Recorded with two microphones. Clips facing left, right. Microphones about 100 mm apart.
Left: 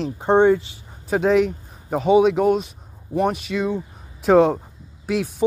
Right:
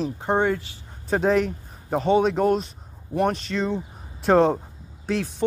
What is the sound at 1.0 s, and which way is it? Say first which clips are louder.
Speech: left 3 dB; 5° left (ahead or behind).